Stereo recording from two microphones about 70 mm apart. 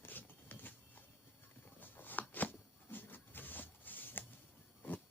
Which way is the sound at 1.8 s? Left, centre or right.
Left.